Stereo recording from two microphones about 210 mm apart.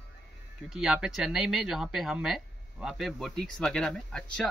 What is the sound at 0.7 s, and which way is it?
Speech, 5° right (ahead or behind).